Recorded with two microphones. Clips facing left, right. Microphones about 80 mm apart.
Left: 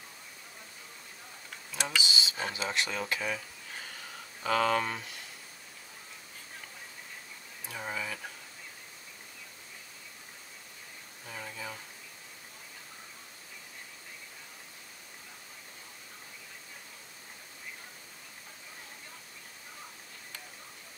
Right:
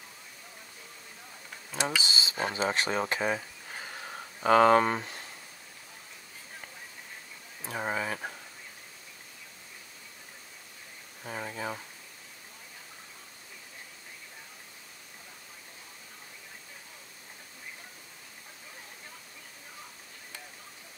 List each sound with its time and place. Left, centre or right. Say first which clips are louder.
2.0 s speech: right 1 dB; right
3.8 s a sound: right 4 dB; right
7.6 s speech: right 5 dB; right
11.2 s speech: right 6 dB; right